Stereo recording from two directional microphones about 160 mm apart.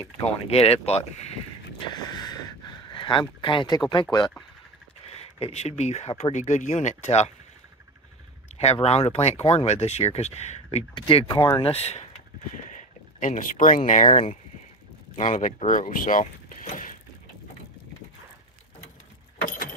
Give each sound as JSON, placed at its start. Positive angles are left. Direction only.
{"t": 0.0, "sound": "speech", "side_deg": 40}
{"t": 1.8, "sound": "a sound", "side_deg": 25}
{"t": 2.9, "sound": "speech", "side_deg": 30}
{"t": 5.0, "sound": "speech", "side_deg": 40}
{"t": 8.8, "sound": "speech", "side_deg": 40}
{"t": 11.0, "sound": "speech", "side_deg": 35}
{"t": 11.7, "sound": "speech", "side_deg": 40}